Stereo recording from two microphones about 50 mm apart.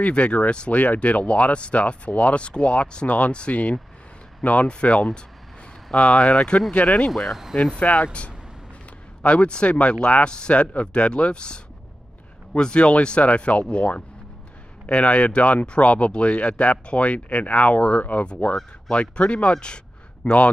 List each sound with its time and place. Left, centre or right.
0.0 s speech: left
7.1 s speech: centre
7.5 s speech: left